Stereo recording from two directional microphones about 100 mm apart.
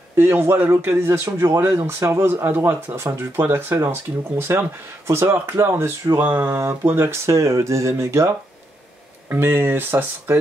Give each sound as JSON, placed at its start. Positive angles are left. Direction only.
{"t": 0.1, "sound": "a man's voice", "side_deg": -25}
{"t": 6.5, "sound": "a man's voice", "side_deg": -25}
{"t": 9.3, "sound": "a man's voice", "side_deg": -20}